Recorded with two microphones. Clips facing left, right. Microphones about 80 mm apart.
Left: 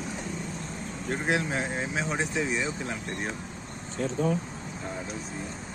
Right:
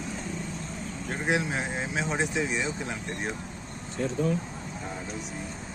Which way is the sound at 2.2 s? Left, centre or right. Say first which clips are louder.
Right 1 dB; centre.